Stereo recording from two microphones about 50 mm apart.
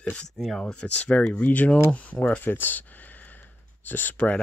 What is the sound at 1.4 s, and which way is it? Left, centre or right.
Speech, left.